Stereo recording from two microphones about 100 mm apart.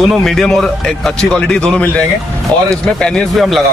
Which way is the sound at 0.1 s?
5° left (ahead or behind).